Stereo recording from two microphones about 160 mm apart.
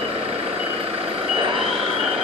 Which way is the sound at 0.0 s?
35° right (ahead or behind).